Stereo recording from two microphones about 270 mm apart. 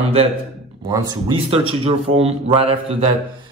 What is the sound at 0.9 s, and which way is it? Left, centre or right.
A man's voice, centre.